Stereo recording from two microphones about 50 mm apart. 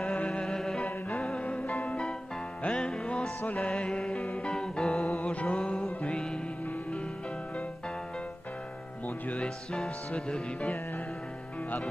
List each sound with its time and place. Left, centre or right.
0.0 s music: left
2.6 s music: centre
3.4 s speech: left
3.7 s music: centre
9.0 s speech: left